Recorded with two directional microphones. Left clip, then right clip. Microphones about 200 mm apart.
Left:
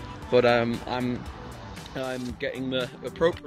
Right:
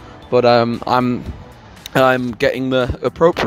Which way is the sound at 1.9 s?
55° right (ahead or behind).